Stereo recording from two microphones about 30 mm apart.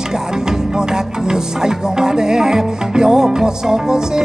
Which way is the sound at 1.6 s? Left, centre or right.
Right.